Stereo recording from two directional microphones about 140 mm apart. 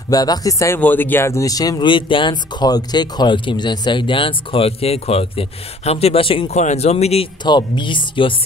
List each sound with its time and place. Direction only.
0.1 s speech: 25° left (ahead or behind)
0.7 s speech: 15° left (ahead or behind); by 6.5 s 40° left (ahead or behind)
6.5 s speech: 55° left (ahead or behind)
7.4 s speech: 30° left (ahead or behind)